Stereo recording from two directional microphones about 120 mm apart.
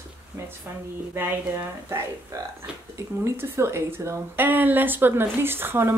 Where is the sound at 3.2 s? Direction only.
20° right (ahead or behind).